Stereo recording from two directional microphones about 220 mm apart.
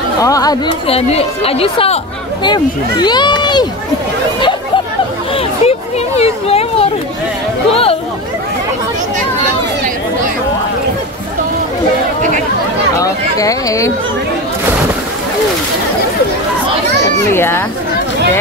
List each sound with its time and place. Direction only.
0.2 s speech: 15° left (ahead or behind)
5.3 s a sound: 30° left (ahead or behind)
7.7 s chatter: 25° left (ahead or behind)
12.9 s speech: 15° left (ahead or behind)
17.3 s speech: 10° left (ahead or behind)